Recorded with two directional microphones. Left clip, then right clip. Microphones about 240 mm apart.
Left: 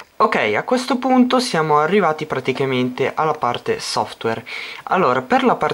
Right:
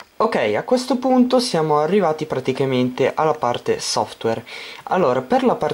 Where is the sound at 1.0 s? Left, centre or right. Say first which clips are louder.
Left 2 dB; left.